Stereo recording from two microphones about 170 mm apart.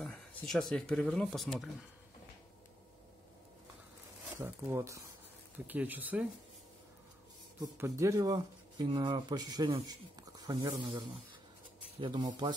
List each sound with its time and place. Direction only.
0.0 s speech: 5° left (ahead or behind)
4.4 s speech: 15° right (ahead or behind)
7.7 s speech: 15° right (ahead or behind)